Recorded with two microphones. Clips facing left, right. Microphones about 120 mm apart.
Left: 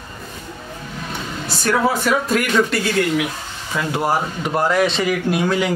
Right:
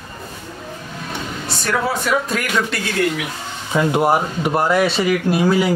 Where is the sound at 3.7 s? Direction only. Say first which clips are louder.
Right 4 dB; 20° right (ahead or behind).